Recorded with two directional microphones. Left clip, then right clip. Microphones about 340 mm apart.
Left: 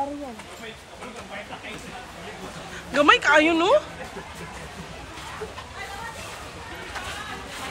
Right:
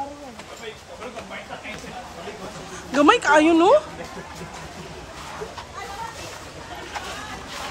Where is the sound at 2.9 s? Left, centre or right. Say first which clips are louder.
Right 1 dB; centre.